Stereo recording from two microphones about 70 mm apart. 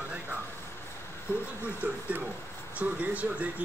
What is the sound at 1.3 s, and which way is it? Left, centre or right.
Speech, left.